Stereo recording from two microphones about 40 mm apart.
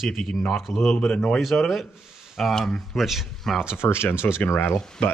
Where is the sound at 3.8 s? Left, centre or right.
Left.